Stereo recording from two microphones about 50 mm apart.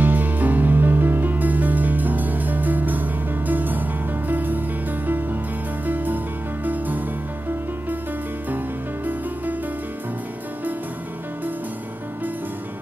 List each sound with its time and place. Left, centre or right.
0.0 s music: right